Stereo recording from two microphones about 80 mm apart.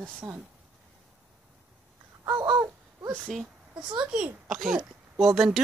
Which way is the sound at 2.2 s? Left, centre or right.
Right.